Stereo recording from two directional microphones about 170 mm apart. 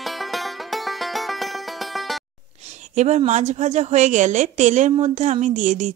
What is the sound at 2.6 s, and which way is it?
A woman's voice, 40° right (ahead or behind).